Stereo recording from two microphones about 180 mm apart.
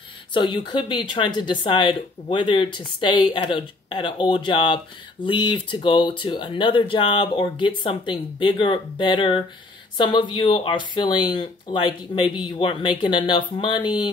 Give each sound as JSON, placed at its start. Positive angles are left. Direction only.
{"t": 0.3, "sound": "speech", "side_deg": 25}